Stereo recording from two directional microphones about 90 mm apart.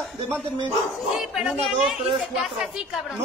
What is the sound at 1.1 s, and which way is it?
Speech, 5° right (ahead or behind).